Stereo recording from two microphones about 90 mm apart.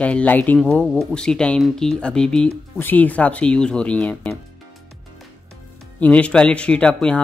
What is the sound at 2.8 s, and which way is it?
Speech, 20° left (ahead or behind).